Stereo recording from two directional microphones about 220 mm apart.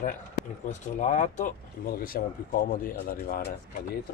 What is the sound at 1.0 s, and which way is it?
Speech, 35° left (ahead or behind).